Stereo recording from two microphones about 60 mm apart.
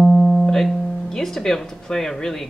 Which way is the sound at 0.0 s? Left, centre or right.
Centre.